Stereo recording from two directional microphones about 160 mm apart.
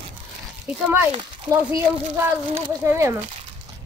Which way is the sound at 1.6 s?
15° right (ahead or behind).